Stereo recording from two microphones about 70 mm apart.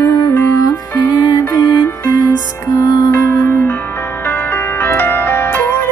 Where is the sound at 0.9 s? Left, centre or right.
Left.